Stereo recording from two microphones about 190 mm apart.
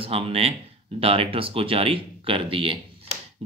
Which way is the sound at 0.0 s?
30° right (ahead or behind).